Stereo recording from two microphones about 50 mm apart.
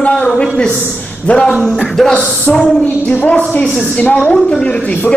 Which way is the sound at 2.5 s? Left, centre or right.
Left.